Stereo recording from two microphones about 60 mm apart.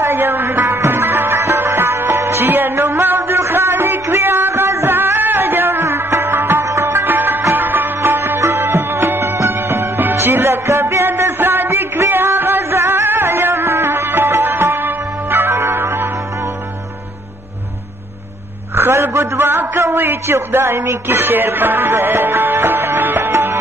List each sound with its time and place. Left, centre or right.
0.0 s music: right
6.6 s music: right
6.9 s music: right
18.8 s a sound: right
20.3 s music: right
21.2 s music: right